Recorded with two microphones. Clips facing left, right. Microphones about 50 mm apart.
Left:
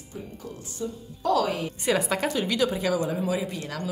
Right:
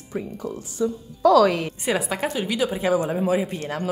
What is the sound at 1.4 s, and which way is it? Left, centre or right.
Speech, right.